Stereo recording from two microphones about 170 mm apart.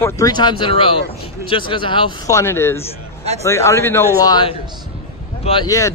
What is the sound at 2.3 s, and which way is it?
Speech, 15° left (ahead or behind).